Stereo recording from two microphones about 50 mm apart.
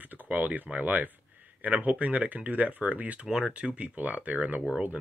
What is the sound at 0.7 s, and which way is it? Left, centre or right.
Speech, right.